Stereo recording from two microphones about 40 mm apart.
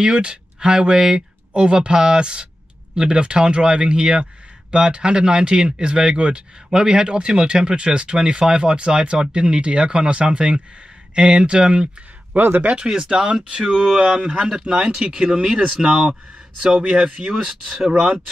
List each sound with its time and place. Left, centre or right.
0.0 s speech: right
12.4 s speech: right
12.6 s speech: right